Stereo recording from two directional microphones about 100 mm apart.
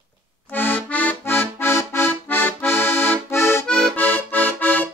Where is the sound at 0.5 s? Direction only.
20° left (ahead or behind).